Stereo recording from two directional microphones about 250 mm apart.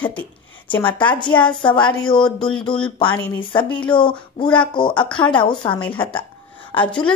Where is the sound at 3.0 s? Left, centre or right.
Centre.